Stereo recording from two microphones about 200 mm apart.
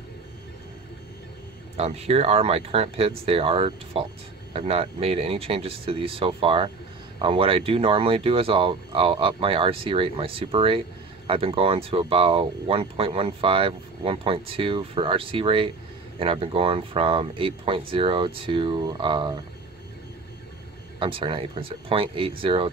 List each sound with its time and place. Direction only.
1.8 s speech: 30° right (ahead or behind)
21.0 s speech: 25° right (ahead or behind)